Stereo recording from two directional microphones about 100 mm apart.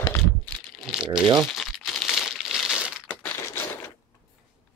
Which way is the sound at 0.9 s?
5° right (ahead or behind).